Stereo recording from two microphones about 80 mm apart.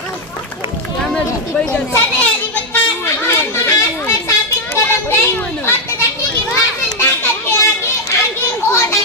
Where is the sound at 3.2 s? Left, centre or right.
Left.